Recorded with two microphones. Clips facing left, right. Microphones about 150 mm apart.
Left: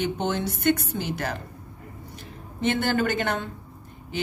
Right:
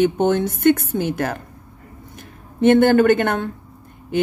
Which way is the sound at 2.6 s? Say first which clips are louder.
Right 11 dB; 55° right (ahead or behind).